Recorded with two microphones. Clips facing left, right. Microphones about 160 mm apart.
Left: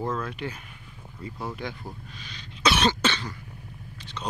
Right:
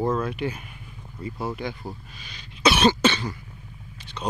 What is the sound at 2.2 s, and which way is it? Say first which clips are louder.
Cough: right 4 dB; 10° right (ahead or behind).